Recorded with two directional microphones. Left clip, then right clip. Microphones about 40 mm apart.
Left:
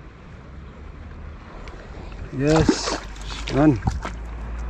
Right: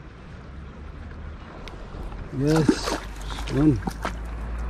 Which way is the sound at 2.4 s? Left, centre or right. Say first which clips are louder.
Left 3 dB; centre.